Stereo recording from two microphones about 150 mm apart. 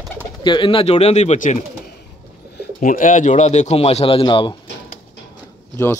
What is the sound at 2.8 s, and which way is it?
A man's voice, 60° left (ahead or behind).